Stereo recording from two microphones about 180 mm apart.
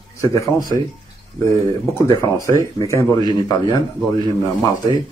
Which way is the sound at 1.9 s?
20° left (ahead or behind).